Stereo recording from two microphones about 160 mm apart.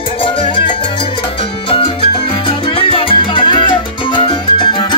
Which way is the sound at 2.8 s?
35° left (ahead or behind).